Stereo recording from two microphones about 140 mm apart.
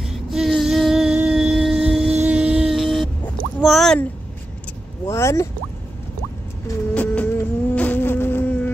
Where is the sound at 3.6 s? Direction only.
5° left (ahead or behind).